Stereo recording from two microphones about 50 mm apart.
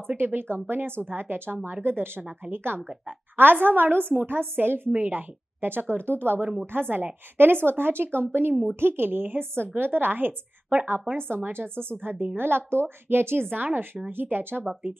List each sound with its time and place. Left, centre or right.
0.2 s a woman's voice: right
14.6 s speech: right